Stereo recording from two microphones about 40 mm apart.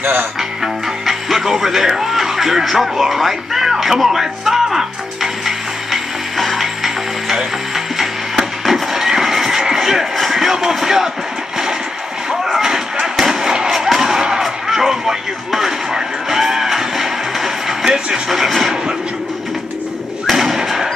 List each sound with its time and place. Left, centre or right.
0.0 s speech: right
0.4 s music: centre
12.6 s a sound: centre
14.4 s music: centre
17.8 s speech: centre
18.3 s speech: centre
20.2 s thump: centre